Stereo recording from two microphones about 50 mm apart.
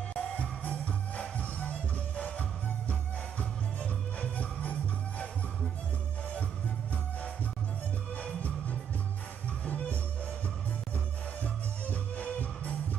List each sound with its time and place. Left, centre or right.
0.2 s music: left
8.2 s music: left
11.9 s music: left